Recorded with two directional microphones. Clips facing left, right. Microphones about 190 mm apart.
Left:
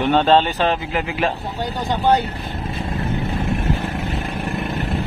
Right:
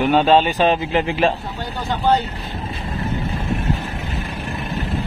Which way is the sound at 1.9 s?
10° left (ahead or behind).